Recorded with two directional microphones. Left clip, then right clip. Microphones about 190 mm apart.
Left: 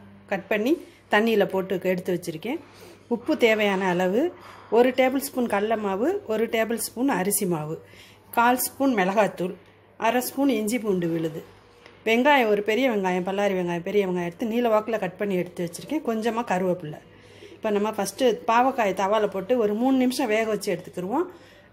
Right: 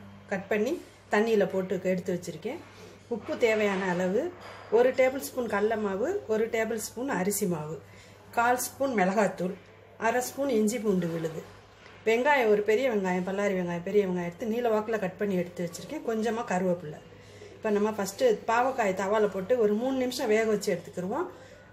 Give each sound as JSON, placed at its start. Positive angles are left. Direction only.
{"t": 0.3, "sound": "a woman's voice", "side_deg": 45}